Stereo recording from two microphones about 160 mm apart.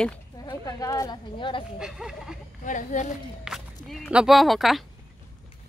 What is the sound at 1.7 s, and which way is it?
Speech, 5° right (ahead or behind).